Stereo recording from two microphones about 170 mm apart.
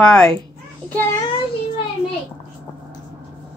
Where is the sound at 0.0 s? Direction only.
5° left (ahead or behind).